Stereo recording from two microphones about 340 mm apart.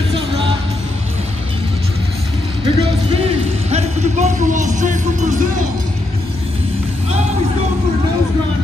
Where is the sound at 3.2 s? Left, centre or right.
Centre.